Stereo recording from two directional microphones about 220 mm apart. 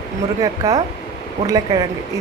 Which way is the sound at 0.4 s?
15° right (ahead or behind).